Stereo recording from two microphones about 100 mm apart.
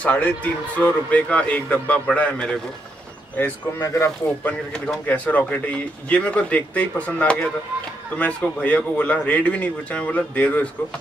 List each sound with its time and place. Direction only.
0.0 s speech: 15° left (ahead or behind)
3.8 s speech: 30° left (ahead or behind)
4.5 s speech: 10° left (ahead or behind)